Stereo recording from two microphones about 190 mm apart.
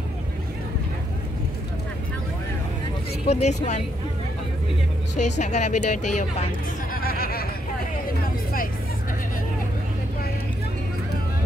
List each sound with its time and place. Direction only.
3.3 s speech: 35° left (ahead or behind)
5.4 s speech: 40° left (ahead or behind)
6.9 s a sound: 50° left (ahead or behind)